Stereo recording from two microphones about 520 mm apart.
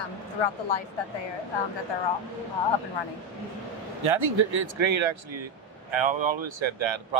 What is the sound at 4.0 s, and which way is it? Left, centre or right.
Speech, right.